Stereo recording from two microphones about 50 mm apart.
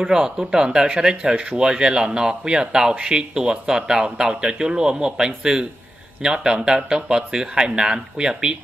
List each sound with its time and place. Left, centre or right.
0.0 s speech: centre